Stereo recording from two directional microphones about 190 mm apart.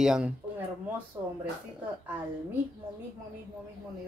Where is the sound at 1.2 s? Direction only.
20° right (ahead or behind).